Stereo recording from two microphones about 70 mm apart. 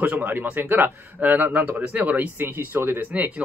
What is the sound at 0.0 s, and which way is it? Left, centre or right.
Speech, right.